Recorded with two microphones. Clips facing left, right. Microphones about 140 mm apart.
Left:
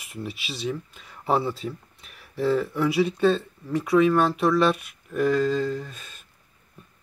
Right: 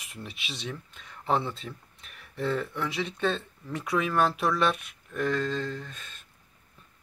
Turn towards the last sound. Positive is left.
turn(degrees=5)  # may be behind; listen again after turning